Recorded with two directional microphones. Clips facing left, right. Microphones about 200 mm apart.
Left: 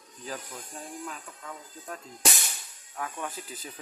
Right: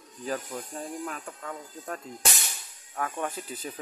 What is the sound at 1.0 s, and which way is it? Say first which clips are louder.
Speech: right 4 dB; 65° right (ahead or behind).